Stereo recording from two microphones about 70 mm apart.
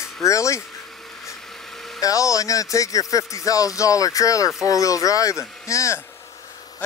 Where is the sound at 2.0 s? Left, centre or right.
Left.